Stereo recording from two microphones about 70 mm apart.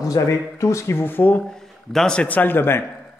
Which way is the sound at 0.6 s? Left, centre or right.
Left.